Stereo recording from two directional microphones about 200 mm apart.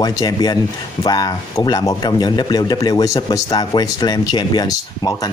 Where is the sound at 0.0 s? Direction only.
20° left (ahead or behind).